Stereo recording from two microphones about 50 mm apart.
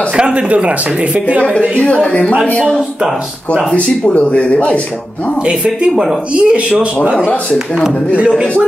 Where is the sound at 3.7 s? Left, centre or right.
Left.